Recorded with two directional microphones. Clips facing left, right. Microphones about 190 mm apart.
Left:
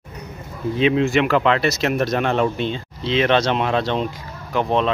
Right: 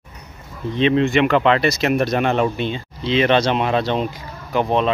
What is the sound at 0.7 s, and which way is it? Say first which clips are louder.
Speech: right 1 dB; 5° left (ahead or behind).